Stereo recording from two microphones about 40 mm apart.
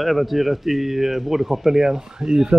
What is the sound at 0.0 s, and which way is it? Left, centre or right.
Speech, centre.